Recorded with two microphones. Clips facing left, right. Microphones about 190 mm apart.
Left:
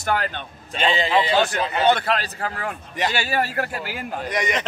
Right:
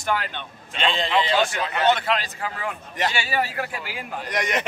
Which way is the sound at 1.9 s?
40° left (ahead or behind).